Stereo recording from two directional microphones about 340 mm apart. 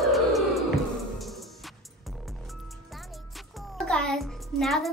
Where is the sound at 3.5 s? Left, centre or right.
Centre.